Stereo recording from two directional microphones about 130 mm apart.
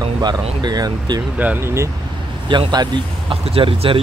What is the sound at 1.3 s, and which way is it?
Speech, 15° right (ahead or behind).